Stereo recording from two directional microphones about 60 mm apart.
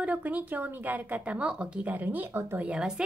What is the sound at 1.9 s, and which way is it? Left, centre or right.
Speech, right.